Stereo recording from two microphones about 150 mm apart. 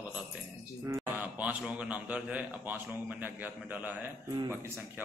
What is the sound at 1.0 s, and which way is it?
A man's voice, 10° right (ahead or behind).